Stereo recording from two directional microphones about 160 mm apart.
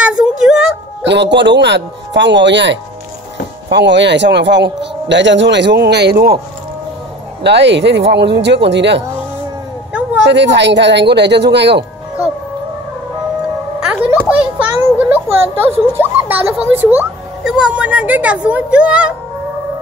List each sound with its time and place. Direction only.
0.0 s a sound: 5° right (ahead or behind)
1.0 s speech: 90° right
7.4 s speech: 90° right
10.3 s speech: 90° right
14.0 s a sound: 10° right (ahead or behind)
16.0 s speech: 10° right (ahead or behind)